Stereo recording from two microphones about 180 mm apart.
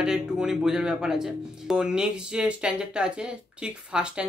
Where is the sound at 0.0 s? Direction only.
5° right (ahead or behind).